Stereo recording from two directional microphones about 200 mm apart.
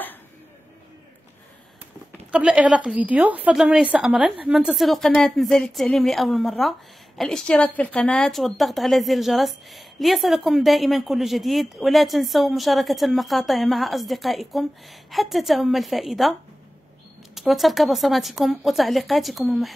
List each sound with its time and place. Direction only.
2.3 s a woman's voice: 5° right (ahead or behind)
17.4 s a woman's voice: centre (ahead or behind)